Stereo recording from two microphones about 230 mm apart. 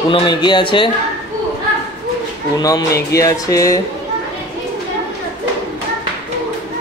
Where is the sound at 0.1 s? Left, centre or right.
Centre.